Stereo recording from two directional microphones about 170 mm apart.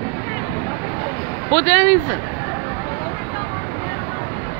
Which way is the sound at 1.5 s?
15° left (ahead or behind).